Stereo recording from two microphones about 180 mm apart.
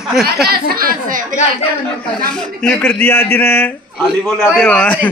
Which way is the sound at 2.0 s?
5° left (ahead or behind).